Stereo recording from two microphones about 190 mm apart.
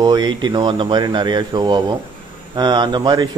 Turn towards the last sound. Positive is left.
turn(degrees=-20)  # may be behind; listen again after turning